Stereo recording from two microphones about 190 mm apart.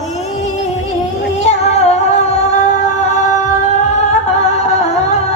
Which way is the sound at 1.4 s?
35° left (ahead or behind).